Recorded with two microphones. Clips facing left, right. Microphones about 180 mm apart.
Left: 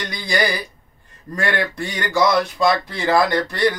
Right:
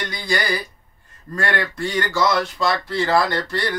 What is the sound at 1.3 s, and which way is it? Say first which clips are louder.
Speech: left 1 dB; 15° left (ahead or behind).